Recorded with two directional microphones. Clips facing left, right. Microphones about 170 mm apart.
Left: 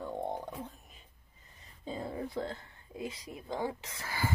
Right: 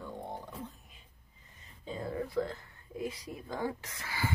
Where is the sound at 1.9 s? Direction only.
25° left (ahead or behind).